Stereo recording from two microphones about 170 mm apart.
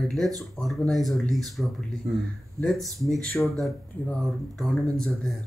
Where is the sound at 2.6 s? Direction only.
Centre (ahead or behind).